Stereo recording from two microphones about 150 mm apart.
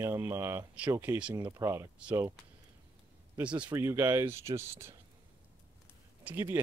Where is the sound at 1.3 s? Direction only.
25° right (ahead or behind).